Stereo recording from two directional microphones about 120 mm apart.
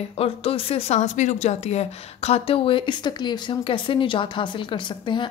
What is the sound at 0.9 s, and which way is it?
A woman's voice, 85° left.